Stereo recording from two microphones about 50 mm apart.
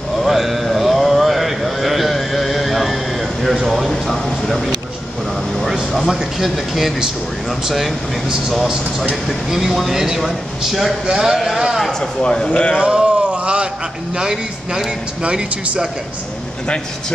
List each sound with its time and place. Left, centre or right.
0.2 s a sound: centre
5.6 s air conditioning: centre
7.6 s speech: centre
11.1 s a man's voice: centre
12.0 s speech: centre
12.8 s a sound: right
14.1 s speech: centre